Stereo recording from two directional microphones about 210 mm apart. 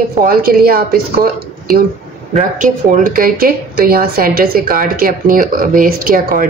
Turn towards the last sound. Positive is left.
turn(degrees=-40)  # may be behind; listen again after turning